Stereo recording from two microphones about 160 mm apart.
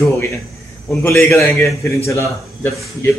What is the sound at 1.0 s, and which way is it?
Speech, 15° left (ahead or behind).